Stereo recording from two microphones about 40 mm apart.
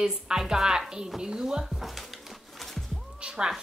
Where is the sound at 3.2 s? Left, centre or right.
Right.